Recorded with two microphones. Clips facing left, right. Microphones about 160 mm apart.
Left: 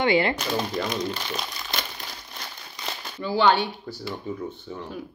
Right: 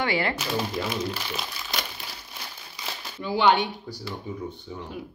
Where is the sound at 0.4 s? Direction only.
5° right (ahead or behind).